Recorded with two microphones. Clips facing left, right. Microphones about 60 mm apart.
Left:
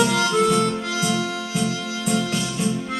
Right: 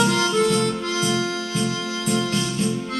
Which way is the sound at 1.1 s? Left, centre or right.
Centre.